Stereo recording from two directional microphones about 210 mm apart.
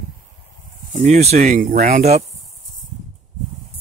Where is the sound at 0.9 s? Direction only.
35° right (ahead or behind).